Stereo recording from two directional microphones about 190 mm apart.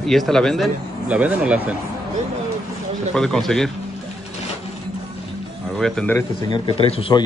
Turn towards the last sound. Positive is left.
turn(degrees=30)  # may be behind; listen again after turning